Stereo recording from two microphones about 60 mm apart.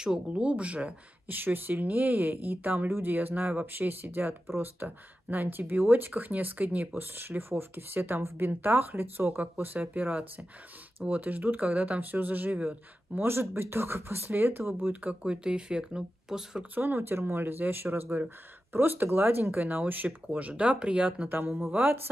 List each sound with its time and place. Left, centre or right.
0.3 s speech: right
13.2 s speech: right; by 16.6 s centre
16.7 s speech: right; by 21.3 s centre
21.3 s speech: right